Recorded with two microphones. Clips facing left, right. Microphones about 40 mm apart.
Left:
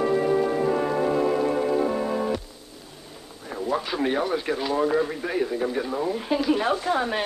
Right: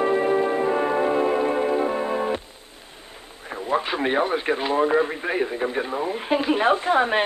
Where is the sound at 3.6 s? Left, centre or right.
Right.